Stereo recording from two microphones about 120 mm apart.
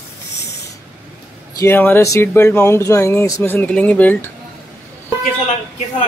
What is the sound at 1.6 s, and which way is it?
Speech, 20° left (ahead or behind).